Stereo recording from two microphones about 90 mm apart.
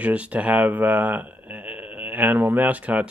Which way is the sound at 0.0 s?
15° right (ahead or behind).